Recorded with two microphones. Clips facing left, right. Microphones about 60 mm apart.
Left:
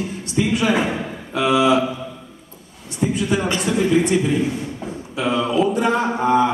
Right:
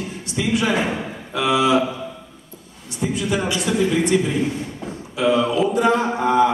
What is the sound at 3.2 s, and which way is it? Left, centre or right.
Speech, left.